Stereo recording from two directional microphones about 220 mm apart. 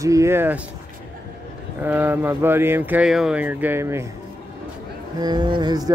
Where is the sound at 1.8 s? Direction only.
10° right (ahead or behind).